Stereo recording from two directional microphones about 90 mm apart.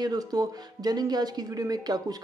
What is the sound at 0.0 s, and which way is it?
Speech, 45° right (ahead or behind).